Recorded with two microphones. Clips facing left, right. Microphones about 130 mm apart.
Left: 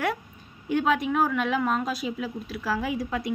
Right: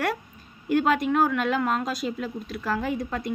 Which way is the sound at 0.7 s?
Centre (ahead or behind).